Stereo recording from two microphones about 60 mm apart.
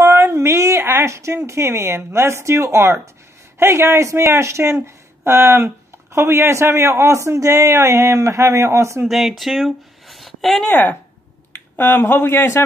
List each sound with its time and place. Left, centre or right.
0.0 s a woman's voice: right
9.0 s speech: centre
10.7 s speech: left